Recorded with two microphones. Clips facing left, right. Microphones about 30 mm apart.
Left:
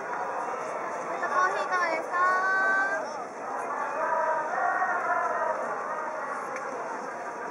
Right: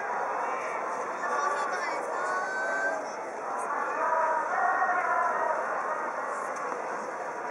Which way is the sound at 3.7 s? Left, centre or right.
Centre.